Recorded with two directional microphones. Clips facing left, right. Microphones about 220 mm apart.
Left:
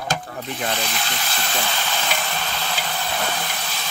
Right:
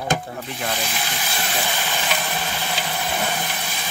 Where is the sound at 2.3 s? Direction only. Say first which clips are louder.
Right 1 dB; 15° right (ahead or behind).